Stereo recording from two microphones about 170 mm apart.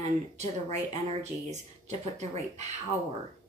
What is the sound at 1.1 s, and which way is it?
A woman's voice, 40° right (ahead or behind).